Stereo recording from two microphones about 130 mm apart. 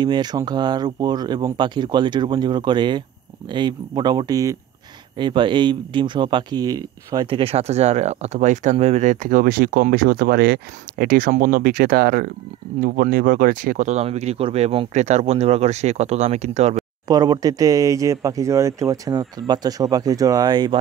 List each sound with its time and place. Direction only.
0.0 s speech: 35° right (ahead or behind)
7.3 s speech: 50° right (ahead or behind); by 11.6 s 90° right
12.8 s speech: 90° right; by 16.7 s 60° right (ahead or behind)
17.1 s speech: 30° right (ahead or behind)